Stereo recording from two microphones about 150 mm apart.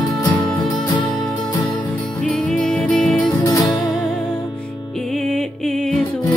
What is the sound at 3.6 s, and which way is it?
Music, centre (ahead or behind).